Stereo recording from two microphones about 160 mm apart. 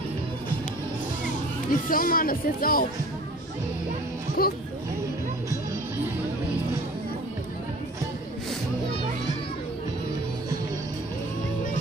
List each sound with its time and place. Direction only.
1.7 s speech: 60° left (ahead or behind)
4.4 s speech: 70° left (ahead or behind)